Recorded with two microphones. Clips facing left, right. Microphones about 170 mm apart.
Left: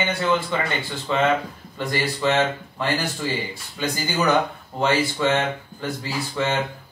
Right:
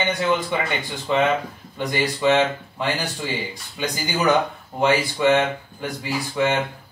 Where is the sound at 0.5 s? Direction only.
10° right (ahead or behind).